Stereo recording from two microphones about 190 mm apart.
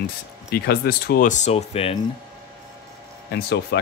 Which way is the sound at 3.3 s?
60° left (ahead or behind).